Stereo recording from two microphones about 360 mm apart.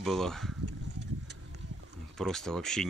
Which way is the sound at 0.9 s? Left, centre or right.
Right.